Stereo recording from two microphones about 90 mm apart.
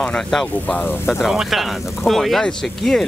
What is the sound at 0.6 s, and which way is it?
Speech, 20° left (ahead or behind).